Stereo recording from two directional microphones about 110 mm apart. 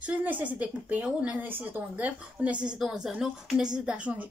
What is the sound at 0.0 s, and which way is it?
A woman's voice, 15° right (ahead or behind).